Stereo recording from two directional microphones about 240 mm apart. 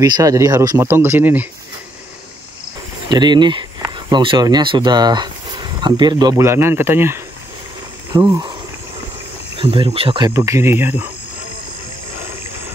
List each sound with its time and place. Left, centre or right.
0.0 s speech: centre
3.1 s speech: centre
9.6 s speech: right